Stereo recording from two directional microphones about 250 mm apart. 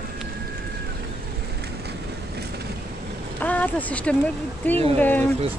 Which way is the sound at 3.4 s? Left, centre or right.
Centre.